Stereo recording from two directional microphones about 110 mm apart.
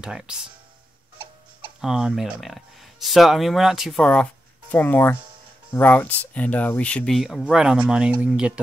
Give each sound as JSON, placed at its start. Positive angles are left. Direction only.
{"t": 0.0, "sound": "speech", "side_deg": -5}
{"t": 1.1, "sound": "a sound", "side_deg": -45}
{"t": 1.8, "sound": "speech", "side_deg": -5}
{"t": 7.2, "sound": "speech", "side_deg": 0}